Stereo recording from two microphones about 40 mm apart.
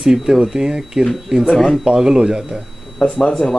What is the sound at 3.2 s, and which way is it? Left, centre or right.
Speech, centre.